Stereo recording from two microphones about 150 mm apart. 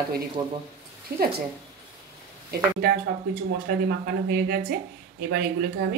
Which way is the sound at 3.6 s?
90° right.